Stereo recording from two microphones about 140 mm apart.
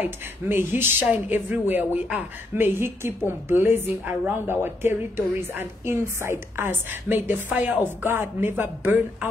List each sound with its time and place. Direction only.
0.0 s a woman's voice: 15° right (ahead or behind)